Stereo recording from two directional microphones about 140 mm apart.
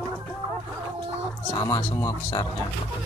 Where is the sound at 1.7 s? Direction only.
30° left (ahead or behind).